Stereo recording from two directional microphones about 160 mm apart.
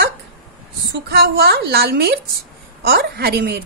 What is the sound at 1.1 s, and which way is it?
A woman's voice, 75° right (ahead or behind).